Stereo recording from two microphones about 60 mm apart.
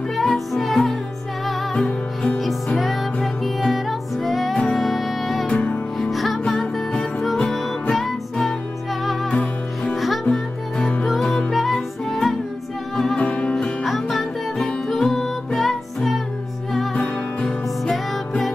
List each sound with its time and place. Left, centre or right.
0.1 s music: centre
5.5 s music: left
5.9 s music: centre
9.3 s music: centre
9.9 s music: centre
10.3 s music: centre
13.2 s music: centre
13.8 s music: centre
17.4 s music: centre